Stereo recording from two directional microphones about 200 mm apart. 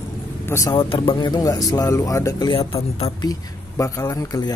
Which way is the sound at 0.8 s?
25° left (ahead or behind).